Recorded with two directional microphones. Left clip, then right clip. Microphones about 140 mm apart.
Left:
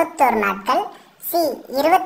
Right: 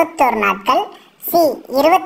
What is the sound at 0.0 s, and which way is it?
A child's voice, 15° right (ahead or behind).